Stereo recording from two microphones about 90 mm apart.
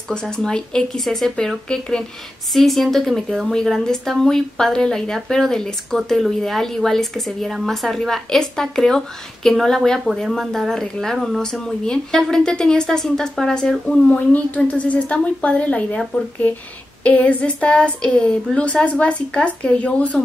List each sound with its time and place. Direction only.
0.1 s a woman's voice: 10° left (ahead or behind)